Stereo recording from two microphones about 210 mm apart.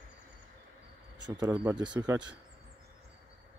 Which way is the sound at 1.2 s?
20° right (ahead or behind).